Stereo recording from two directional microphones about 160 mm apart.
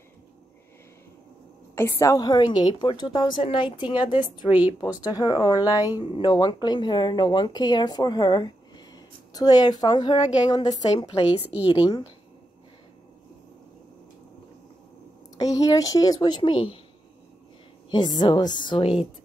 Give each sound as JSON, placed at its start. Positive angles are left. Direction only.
{"t": 1.8, "sound": "speech", "side_deg": 15}
{"t": 4.5, "sound": "speech", "side_deg": -10}
{"t": 5.0, "sound": "speech", "side_deg": 25}
{"t": 11.4, "sound": "speech", "side_deg": -10}
{"t": 11.7, "sound": "speech", "side_deg": 30}
{"t": 15.3, "sound": "speech", "side_deg": 20}
{"t": 17.9, "sound": "speech", "side_deg": 30}